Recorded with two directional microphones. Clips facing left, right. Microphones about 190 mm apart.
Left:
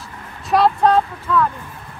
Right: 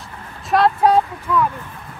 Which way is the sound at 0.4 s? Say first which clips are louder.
Even; centre (ahead or behind).